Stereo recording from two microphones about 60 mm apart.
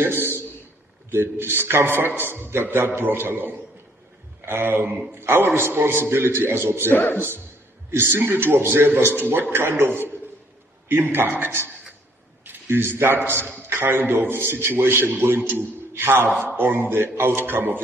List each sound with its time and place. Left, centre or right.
0.0 s a sound: right
1.1 s a man's voice: right
6.9 s speech: left
7.2 s a man's voice: right